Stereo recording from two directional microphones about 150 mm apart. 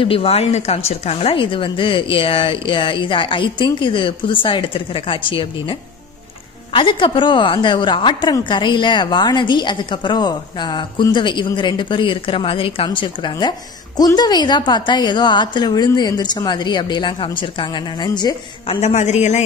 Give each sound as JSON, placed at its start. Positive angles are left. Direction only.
{"t": 0.0, "sound": "a woman's voice", "side_deg": 40}
{"t": 18.8, "sound": "a man's voice", "side_deg": 50}